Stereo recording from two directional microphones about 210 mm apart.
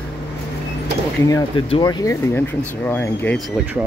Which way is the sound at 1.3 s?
15° left (ahead or behind).